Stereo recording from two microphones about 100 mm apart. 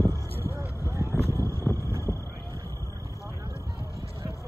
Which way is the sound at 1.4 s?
30° left (ahead or behind).